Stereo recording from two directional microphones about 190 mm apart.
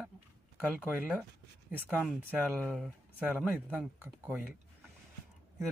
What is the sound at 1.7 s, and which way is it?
Speech, 10° right (ahead or behind).